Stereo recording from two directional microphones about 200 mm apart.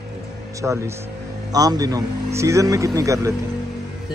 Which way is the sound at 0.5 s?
15° right (ahead or behind).